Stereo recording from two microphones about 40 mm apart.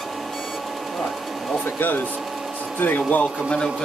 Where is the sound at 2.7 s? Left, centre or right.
Left.